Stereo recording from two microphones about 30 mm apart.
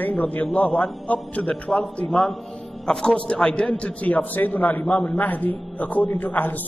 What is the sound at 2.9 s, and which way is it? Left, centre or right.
Speech, left.